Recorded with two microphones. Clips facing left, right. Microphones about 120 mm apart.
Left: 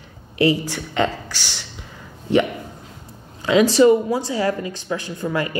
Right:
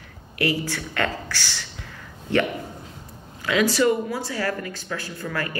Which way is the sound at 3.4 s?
25° left (ahead or behind).